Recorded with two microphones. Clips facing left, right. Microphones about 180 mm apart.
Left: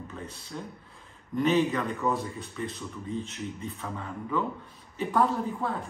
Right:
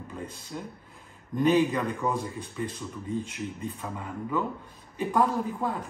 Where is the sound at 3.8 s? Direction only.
10° right (ahead or behind).